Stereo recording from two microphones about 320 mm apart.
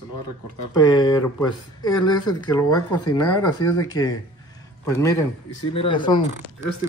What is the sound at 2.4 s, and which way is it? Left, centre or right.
A man's voice, centre.